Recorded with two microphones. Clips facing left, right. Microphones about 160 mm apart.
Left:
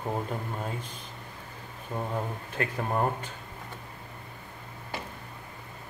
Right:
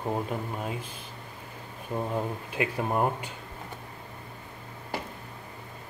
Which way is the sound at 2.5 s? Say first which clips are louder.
Right 2 dB; 10° right (ahead or behind).